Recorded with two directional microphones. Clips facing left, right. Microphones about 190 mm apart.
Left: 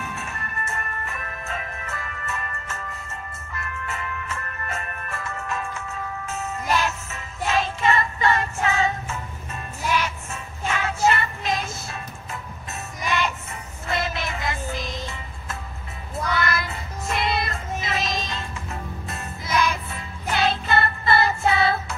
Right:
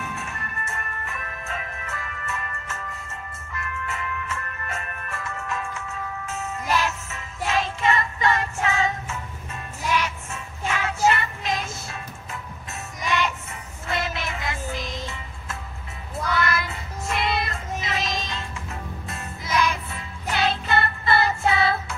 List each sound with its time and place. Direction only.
0.7 s music: 35° left (ahead or behind)
10.7 s music: 35° left (ahead or behind)
16.3 s child singing: 40° left (ahead or behind)
19.0 s music: 40° left (ahead or behind)